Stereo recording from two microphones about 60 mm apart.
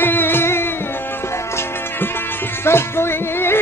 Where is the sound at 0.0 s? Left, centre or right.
Left.